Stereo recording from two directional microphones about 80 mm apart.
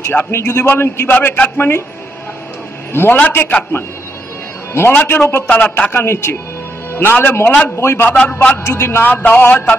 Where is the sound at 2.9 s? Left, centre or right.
Left.